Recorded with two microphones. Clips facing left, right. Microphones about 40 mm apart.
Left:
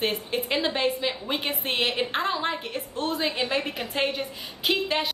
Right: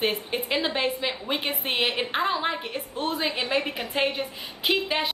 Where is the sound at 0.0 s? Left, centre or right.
Centre.